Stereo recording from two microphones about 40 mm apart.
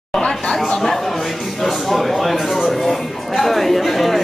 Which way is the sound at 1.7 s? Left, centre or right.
Centre.